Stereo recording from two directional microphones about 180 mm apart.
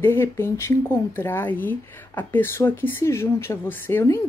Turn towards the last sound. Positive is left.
turn(degrees=10)  # may be behind; listen again after turning